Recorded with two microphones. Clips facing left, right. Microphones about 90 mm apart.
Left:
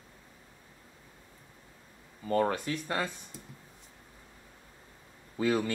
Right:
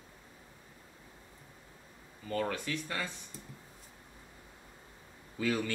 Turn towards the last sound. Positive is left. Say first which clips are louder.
# left 4 dB
turn(degrees=30)  # may be behind; listen again after turning